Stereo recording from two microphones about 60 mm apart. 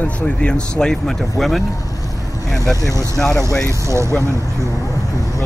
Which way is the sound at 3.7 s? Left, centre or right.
Right.